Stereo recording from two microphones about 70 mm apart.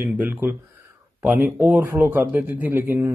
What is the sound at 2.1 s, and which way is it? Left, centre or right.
Speech, right.